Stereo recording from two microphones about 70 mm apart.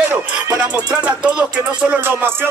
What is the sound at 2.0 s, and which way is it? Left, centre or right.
Speech, right.